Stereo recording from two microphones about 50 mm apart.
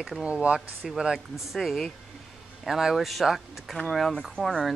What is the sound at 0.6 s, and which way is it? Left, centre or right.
Speech, centre.